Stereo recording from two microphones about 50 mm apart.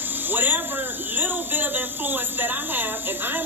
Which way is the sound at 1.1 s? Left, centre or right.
Right.